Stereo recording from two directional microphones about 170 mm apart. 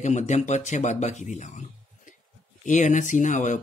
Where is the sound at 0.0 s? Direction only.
45° left (ahead or behind).